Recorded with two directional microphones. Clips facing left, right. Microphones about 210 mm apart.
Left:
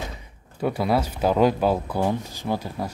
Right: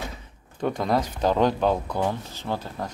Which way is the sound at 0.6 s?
5° left (ahead or behind).